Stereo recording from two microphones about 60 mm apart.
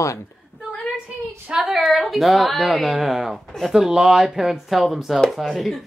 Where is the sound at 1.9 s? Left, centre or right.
Centre.